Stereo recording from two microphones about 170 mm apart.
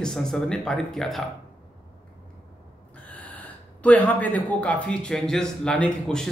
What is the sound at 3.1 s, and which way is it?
Speech, 10° left (ahead or behind).